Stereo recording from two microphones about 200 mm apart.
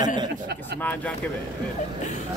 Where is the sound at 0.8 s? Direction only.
10° left (ahead or behind).